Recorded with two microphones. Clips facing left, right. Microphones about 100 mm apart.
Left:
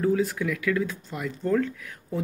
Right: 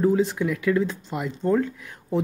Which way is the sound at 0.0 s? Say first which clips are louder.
Right 3 dB; 25° right (ahead or behind).